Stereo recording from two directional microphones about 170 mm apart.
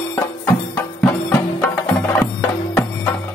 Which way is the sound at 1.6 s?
10° left (ahead or behind).